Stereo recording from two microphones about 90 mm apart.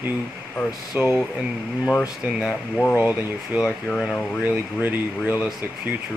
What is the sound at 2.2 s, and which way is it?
Speech, 10° right (ahead or behind).